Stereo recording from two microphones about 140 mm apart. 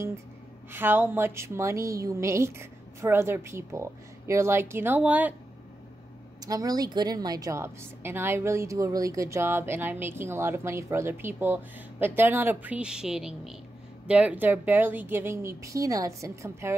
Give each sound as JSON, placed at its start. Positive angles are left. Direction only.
{"t": 0.7, "sound": "a woman's voice", "side_deg": -15}
{"t": 6.4, "sound": "a woman's voice", "side_deg": -25}